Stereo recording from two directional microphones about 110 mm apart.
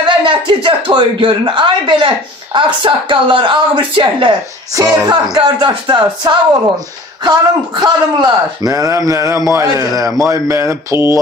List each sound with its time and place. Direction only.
0.2 s speech: 50° right (ahead or behind)
5.0 s a man's voice: 40° right (ahead or behind)